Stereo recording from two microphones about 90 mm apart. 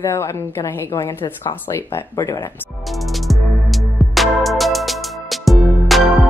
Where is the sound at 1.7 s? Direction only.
40° left (ahead or behind).